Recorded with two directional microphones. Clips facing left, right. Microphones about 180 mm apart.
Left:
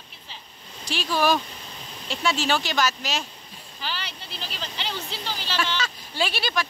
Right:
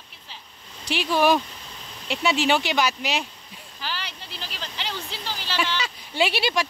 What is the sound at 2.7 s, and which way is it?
Speech, 15° right (ahead or behind).